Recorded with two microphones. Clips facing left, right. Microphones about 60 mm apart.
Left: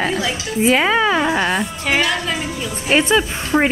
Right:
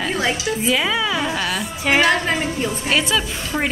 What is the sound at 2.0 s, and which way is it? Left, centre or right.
Speech, right.